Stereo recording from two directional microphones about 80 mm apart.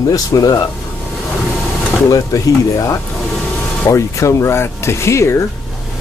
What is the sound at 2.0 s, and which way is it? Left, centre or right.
Speech, left.